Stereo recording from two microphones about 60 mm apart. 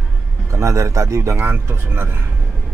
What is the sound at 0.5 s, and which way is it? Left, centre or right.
Speech, right.